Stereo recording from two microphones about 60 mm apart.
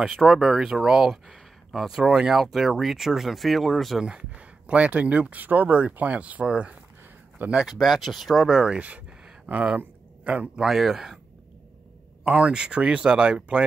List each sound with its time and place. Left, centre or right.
0.1 s speech: centre
2.0 s speech: centre
4.0 s speech: centre
7.6 s speech: centre
8.5 s speech: centre
10.6 s speech: centre
12.3 s speech: centre